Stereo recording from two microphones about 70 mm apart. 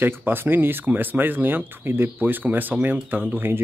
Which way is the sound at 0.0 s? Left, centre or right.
Right.